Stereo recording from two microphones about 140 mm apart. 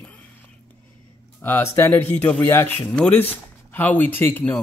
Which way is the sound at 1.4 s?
15° left (ahead or behind).